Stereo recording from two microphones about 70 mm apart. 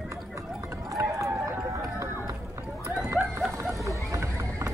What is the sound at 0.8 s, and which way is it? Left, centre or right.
Run, right.